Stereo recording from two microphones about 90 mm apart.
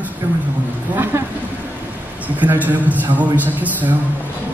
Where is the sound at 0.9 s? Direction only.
20° right (ahead or behind).